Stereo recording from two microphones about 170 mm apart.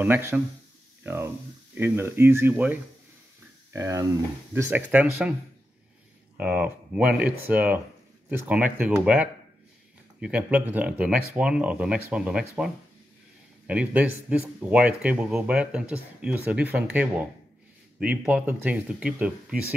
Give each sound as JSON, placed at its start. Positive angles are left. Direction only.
{"t": 0.0, "sound": "speech", "side_deg": -15}
{"t": 1.0, "sound": "a sound", "side_deg": -15}
{"t": 1.8, "sound": "speech", "side_deg": -15}
{"t": 6.3, "sound": "speech", "side_deg": -10}